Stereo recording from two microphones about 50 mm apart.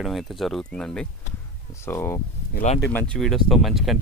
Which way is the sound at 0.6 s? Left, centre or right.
Centre.